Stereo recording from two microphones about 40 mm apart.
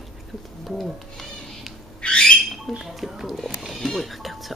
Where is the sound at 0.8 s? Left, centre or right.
Centre.